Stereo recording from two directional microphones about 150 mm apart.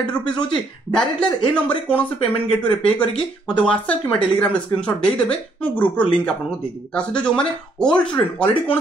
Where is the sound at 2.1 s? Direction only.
40° left (ahead or behind).